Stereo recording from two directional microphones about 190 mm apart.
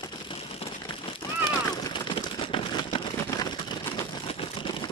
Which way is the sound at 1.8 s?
25° left (ahead or behind).